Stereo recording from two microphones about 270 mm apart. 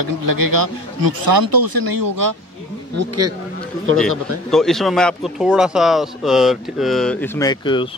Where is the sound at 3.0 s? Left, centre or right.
Right.